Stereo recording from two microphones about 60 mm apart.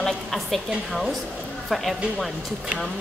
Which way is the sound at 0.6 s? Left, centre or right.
Centre.